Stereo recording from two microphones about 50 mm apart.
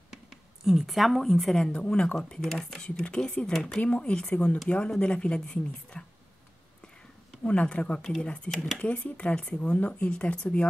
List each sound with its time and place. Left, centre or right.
0.1 s speech: centre
1.7 s speech: centre
2.8 s speech: centre
7.4 s speech: left
8.5 s speech: centre
8.7 s speech: left